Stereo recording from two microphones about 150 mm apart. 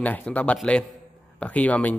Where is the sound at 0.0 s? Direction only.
10° left (ahead or behind).